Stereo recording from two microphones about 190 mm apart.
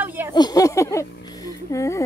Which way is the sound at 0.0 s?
10° right (ahead or behind).